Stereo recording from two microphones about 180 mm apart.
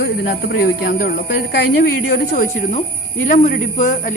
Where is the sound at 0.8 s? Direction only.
50° left (ahead or behind).